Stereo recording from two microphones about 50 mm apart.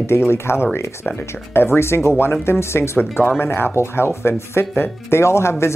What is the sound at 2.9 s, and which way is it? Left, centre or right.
Speech, left.